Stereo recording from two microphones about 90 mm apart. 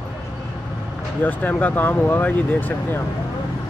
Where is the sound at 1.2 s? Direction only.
20° left (ahead or behind).